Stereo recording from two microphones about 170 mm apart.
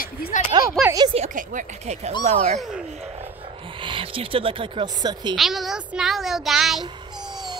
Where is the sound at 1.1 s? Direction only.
45° right (ahead or behind).